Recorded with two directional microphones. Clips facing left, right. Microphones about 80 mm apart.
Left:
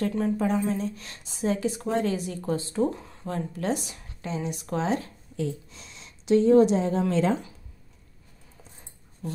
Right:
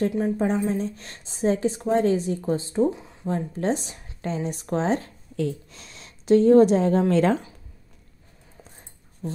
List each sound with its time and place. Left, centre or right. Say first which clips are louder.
0.2 s a woman's voice: right 2 dB; right
2.9 s speech: right 3 dB; centre
3.3 s a woman's voice: right 4 dB; right
4.2 s speech: right 3 dB; right
5.3 s a woman's voice: right 4 dB; right
9.2 s speech: right 3 dB; right